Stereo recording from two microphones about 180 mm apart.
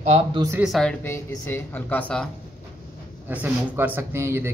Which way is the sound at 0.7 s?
Centre (ahead or behind).